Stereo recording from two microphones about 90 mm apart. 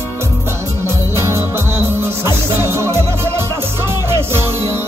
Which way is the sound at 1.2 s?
30° right (ahead or behind).